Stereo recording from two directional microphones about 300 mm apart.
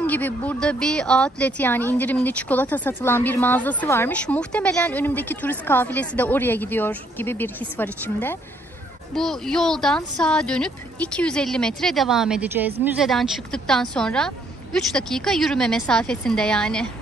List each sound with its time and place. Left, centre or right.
0.0 s speech: centre